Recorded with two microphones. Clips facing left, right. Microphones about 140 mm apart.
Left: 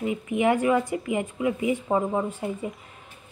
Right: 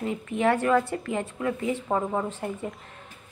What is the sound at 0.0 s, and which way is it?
Speech, 10° left (ahead or behind).